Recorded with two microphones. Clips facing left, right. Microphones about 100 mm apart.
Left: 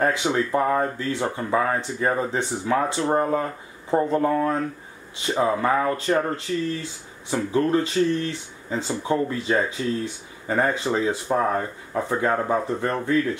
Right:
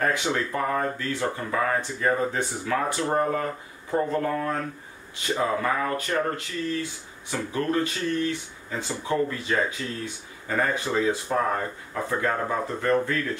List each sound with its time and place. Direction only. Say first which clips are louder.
0.0 s speech: left 3 dB; 25° left (ahead or behind)